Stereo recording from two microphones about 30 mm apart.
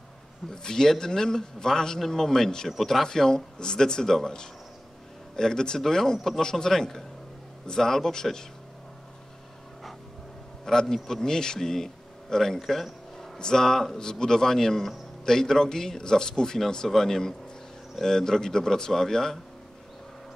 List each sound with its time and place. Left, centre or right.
0.5 s a man's voice: centre
2.8 s a man's voice: centre
3.1 s a man's voice: centre
5.3 s a man's voice: left
10.6 s a man's voice: centre
12.5 s a sound: centre
13.4 s a man's voice: left